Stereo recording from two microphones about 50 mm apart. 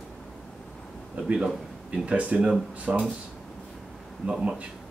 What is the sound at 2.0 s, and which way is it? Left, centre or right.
Speech, right.